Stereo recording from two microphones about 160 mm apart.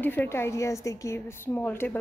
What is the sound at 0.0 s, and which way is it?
A woman's voice, 10° left (ahead or behind).